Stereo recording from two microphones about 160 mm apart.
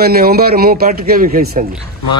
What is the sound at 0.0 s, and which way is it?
Speech, 75° right (ahead or behind).